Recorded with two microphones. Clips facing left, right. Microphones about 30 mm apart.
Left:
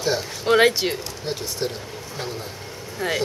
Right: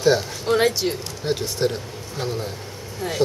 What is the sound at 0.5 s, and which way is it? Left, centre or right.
Speech, left.